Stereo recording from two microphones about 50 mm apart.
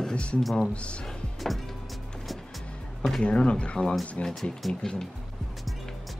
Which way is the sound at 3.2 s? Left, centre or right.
Centre.